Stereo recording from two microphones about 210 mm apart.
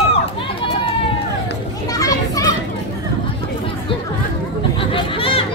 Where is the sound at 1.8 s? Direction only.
15° left (ahead or behind).